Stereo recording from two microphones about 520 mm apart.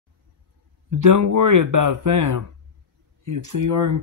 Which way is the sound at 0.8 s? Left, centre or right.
Right.